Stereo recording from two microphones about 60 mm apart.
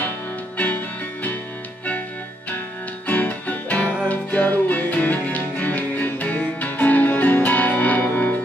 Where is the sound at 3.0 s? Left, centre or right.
Left.